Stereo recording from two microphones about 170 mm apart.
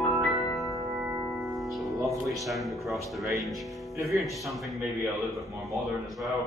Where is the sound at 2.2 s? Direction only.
Centre (ahead or behind).